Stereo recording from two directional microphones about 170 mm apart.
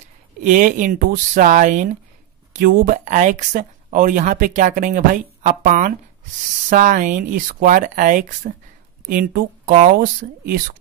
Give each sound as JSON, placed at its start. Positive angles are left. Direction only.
{"t": 0.4, "sound": "speech", "side_deg": -50}